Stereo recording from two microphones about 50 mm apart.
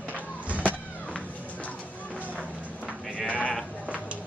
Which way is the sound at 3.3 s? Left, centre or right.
Left.